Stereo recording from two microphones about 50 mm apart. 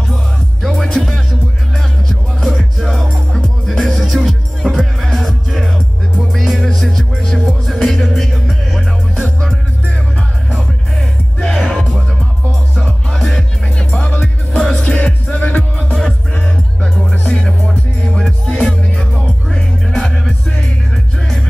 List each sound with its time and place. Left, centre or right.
0.1 s music: centre
10.5 s music: centre
13.7 s music: centre
15.9 s music: centre
17.4 s music: centre
18.0 s music: centre